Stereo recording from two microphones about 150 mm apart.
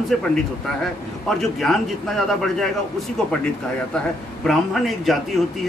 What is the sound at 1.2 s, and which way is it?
Speech, centre (ahead or behind).